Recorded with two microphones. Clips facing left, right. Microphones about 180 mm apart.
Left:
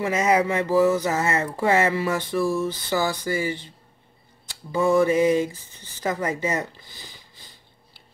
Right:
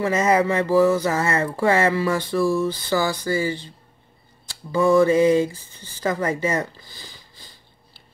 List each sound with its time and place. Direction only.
0.0 s speech: 15° left (ahead or behind)
4.5 s mantra: 20° left (ahead or behind)
5.5 s speech: 20° left (ahead or behind)